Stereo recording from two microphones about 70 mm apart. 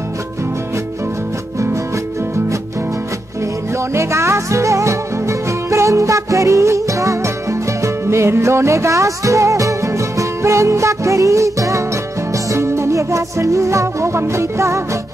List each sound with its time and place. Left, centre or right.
3.9 s music: right